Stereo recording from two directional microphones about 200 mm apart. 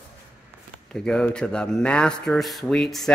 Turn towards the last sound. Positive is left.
turn(degrees=0)  # may be behind; listen again after turning